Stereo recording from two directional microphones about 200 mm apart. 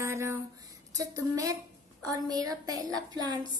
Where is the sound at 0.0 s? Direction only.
15° right (ahead or behind).